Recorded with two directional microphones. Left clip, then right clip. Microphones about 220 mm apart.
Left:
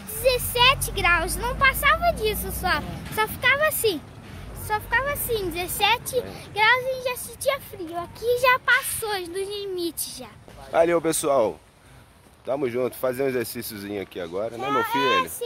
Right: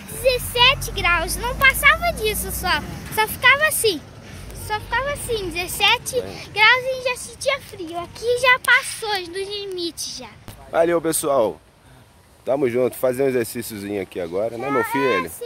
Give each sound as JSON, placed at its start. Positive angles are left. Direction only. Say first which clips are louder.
{"t": 0.1, "sound": "speech", "louder": "right 2 dB", "side_deg": 5}
{"t": 12.4, "sound": "speech", "louder": "right 6 dB", "side_deg": -30}
{"t": 14.6, "sound": "speech", "louder": "even", "side_deg": 10}